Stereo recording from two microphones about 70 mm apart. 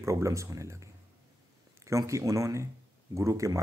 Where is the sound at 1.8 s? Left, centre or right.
Right.